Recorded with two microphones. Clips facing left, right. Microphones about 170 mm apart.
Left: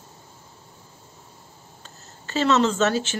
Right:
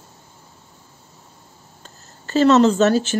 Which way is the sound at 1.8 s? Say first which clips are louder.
Right 2 dB; 40° right (ahead or behind).